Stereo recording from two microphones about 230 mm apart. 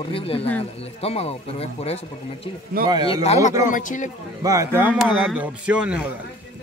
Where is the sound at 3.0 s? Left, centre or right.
Left.